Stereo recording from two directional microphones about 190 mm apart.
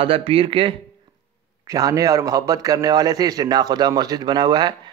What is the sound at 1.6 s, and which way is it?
A man's voice, 20° right (ahead or behind).